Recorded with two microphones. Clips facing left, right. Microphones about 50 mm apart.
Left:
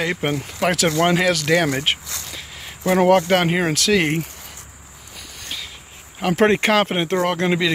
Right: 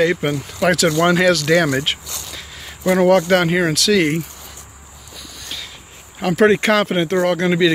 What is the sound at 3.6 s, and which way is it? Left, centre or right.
Speech, left.